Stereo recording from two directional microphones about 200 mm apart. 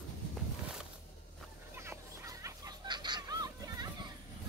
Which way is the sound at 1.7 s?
10° right (ahead or behind).